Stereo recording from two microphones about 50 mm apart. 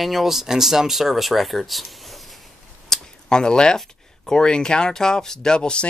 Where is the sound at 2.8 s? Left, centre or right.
Centre.